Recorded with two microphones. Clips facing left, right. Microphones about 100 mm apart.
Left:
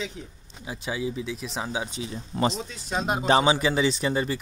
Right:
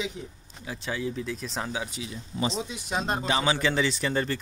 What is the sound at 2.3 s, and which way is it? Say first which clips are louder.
Speech: left 5 dB; 60° left (ahead or behind).